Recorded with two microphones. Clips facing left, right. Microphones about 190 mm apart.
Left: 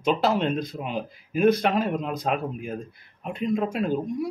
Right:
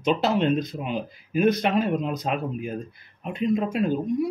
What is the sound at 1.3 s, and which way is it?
Speech, 55° left (ahead or behind).